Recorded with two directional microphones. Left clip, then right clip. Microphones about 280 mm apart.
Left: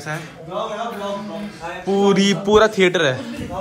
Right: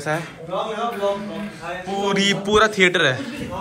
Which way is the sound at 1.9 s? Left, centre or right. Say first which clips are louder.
Left 3 dB; left.